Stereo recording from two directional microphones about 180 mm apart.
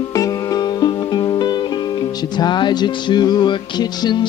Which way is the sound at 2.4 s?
25° left (ahead or behind).